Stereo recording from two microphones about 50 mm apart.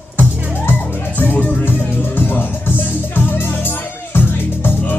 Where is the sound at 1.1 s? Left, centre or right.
Left.